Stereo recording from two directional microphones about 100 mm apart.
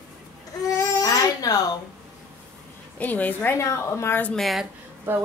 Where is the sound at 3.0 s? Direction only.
15° left (ahead or behind).